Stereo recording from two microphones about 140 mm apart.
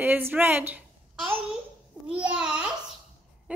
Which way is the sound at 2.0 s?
10° right (ahead or behind).